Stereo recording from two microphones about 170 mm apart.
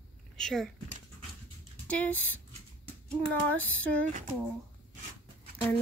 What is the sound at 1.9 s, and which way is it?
Speech, 10° left (ahead or behind).